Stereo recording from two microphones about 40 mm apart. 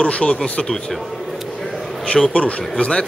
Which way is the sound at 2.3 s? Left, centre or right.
Left.